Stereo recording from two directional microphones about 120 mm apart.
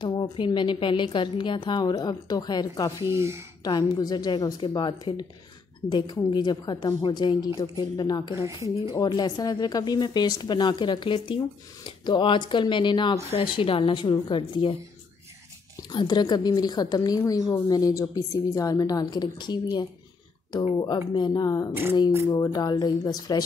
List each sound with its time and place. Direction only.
0.0 s speech: 40° left (ahead or behind)
3.0 s speech: 20° right (ahead or behind)
3.6 s speech: 35° left (ahead or behind)
15.9 s speech: 35° left (ahead or behind)